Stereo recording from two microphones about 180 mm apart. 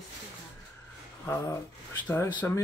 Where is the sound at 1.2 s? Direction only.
15° left (ahead or behind).